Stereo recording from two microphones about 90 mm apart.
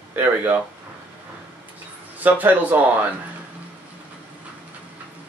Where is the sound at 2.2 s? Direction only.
20° right (ahead or behind).